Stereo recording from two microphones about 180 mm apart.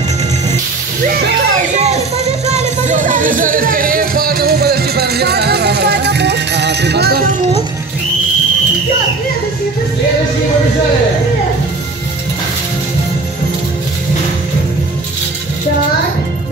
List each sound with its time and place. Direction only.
1.8 s music: 35° right (ahead or behind); by 7.3 s 55° right (ahead or behind)